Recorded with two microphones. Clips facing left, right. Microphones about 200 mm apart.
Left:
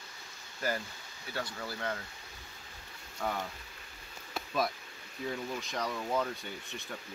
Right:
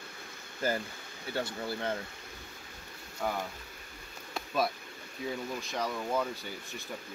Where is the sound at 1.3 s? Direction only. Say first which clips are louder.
Right 4 dB; 25° right (ahead or behind).